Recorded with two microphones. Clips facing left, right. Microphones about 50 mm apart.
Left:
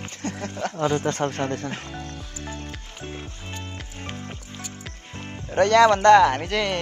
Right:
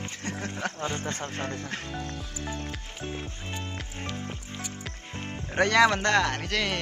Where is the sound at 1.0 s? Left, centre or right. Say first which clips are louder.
Left 8 dB; left.